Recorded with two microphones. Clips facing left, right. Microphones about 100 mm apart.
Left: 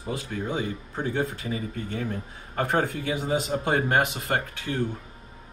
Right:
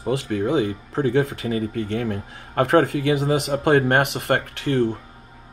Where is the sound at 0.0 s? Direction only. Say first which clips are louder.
Right 9 dB; 80° right.